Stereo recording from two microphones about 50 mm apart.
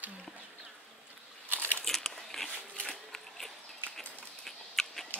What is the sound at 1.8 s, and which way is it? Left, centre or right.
Crumpling, centre.